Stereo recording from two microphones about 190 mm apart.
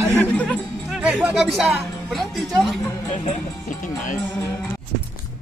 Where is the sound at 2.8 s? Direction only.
30° left (ahead or behind).